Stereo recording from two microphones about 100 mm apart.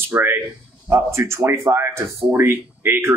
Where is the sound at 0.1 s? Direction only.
20° right (ahead or behind).